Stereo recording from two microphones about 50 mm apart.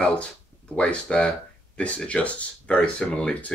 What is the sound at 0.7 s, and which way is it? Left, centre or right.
Speech, left.